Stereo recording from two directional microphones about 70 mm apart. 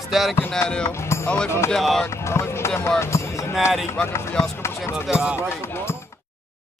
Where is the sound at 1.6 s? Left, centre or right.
Centre.